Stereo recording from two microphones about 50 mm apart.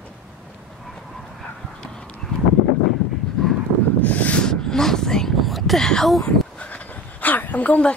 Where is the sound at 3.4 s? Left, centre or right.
Centre.